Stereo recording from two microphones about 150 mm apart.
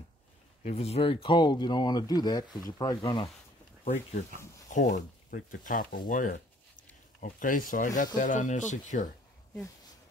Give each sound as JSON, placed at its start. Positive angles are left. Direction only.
{"t": 0.7, "sound": "speech", "side_deg": 40}
{"t": 3.8, "sound": "speech", "side_deg": 55}